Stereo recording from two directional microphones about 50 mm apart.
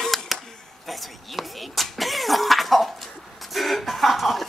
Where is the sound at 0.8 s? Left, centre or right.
Centre.